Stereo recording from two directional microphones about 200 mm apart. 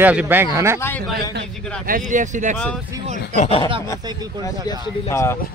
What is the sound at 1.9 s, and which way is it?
Speech, 40° right (ahead or behind).